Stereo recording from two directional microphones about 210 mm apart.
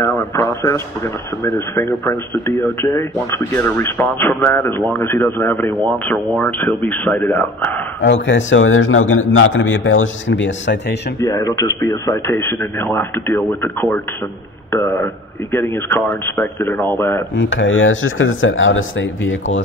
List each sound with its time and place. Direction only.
0.0 s a sound: 10° left (ahead or behind)
1.4 s speech: 10° left (ahead or behind)
8.0 s a man's voice: 60° left (ahead or behind)
11.2 s speech: 15° left (ahead or behind)
17.4 s speech: 60° left (ahead or behind)